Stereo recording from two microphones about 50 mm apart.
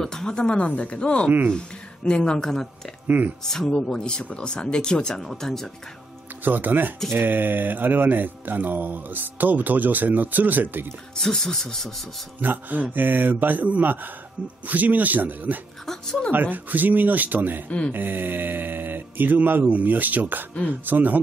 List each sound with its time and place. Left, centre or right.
0.0 s speech: centre
0.7 s a woman's voice: left; by 4.0 s centre
4.0 s speech: centre
6.4 s speech: right
11.1 s speech: centre
12.4 s speech: right
15.8 s speech: centre
16.3 s speech: right